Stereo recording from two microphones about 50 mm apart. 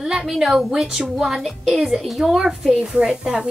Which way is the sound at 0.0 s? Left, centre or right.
Centre.